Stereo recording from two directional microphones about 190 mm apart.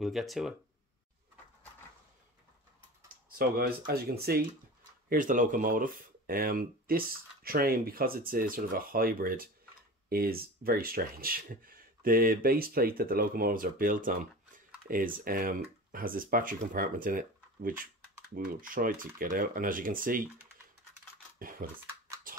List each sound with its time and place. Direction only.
0.0 s speech: centre (ahead or behind)
3.3 s speech: 50° right (ahead or behind)
21.4 s typing: 50° right (ahead or behind)